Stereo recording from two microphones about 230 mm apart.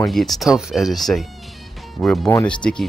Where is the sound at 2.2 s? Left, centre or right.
Centre.